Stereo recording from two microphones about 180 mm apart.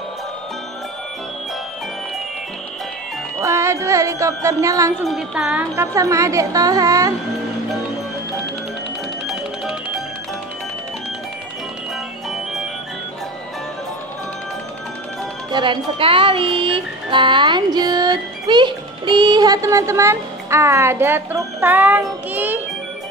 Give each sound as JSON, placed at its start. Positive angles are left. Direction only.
{"t": 3.3, "sound": "speech", "side_deg": -15}
{"t": 5.0, "sound": "speech", "side_deg": -5}
{"t": 15.5, "sound": "music", "side_deg": -25}